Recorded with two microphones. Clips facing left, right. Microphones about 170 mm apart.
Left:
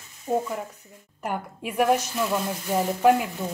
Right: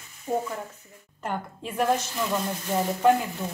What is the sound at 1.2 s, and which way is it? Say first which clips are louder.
A woman's voice: left 1 dB; 10° left (ahead or behind).